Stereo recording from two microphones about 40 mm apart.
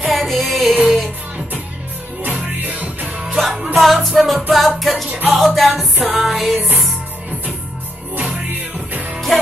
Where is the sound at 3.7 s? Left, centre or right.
Centre.